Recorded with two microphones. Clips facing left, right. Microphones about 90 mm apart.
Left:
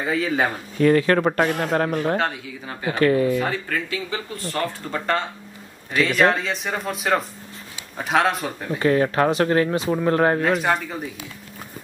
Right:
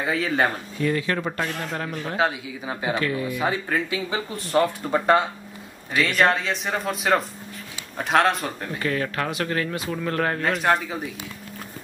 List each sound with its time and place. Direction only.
0.0 s speech: centre (ahead or behind)
0.7 s speech: 55° left (ahead or behind)
2.1 s speech: 10° right (ahead or behind)
3.0 s speech: 50° left (ahead or behind)
3.3 s speech: 20° right (ahead or behind)
5.9 s speech: centre (ahead or behind)
8.7 s speech: 30° left (ahead or behind)
10.4 s speech: centre (ahead or behind)